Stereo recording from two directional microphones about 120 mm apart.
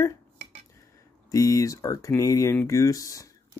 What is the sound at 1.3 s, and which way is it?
Speech, 30° left (ahead or behind).